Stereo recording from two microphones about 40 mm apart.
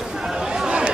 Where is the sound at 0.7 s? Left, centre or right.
Right.